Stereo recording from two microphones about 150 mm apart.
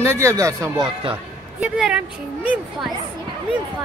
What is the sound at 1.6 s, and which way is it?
Speech, 5° right (ahead or behind).